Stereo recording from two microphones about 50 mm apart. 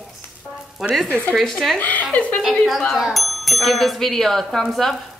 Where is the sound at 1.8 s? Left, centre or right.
Left.